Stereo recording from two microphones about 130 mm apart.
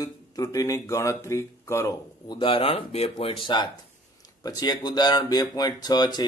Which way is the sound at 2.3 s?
45° left (ahead or behind).